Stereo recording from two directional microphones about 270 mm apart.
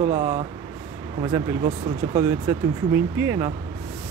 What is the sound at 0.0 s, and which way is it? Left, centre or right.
Speech, centre.